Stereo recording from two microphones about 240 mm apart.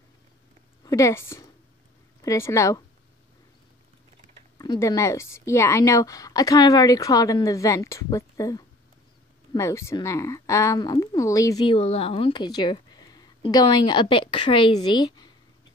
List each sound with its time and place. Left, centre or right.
0.8 s speech: centre
4.6 s speech: centre